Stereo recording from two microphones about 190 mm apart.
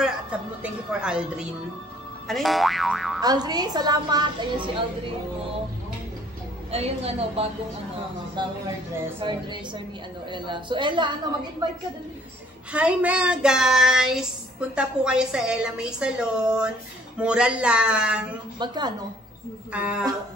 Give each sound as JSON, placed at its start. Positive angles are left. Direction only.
{"t": 0.0, "sound": "child singing", "side_deg": -5}
{"t": 3.2, "sound": "a woman's voice", "side_deg": -20}
{"t": 6.7, "sound": "a woman's voice", "side_deg": -30}
{"t": 12.7, "sound": "child singing", "side_deg": -5}
{"t": 18.6, "sound": "a woman's voice", "side_deg": -25}
{"t": 19.7, "sound": "child singing", "side_deg": -5}